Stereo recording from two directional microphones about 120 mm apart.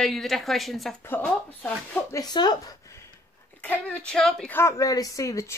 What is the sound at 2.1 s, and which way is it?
Speech, 35° left (ahead or behind).